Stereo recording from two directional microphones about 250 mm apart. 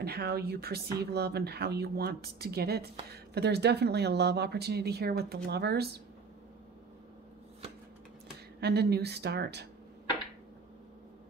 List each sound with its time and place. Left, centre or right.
0.0 s speech: right
8.5 s speech: right